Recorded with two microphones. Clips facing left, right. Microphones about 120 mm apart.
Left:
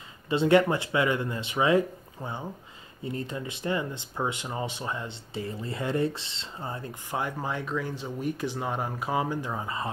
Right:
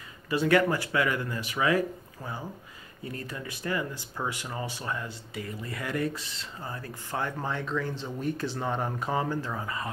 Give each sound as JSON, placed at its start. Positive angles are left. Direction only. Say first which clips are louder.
{"t": 0.3, "sound": "speech", "louder": "left 2 dB", "side_deg": 25}